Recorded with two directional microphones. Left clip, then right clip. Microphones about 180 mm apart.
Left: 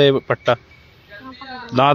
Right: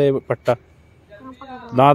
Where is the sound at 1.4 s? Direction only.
60° right (ahead or behind).